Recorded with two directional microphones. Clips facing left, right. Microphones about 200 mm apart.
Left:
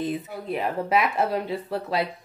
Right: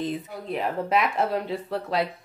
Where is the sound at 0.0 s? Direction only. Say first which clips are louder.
Left 1 dB; 5° left (ahead or behind).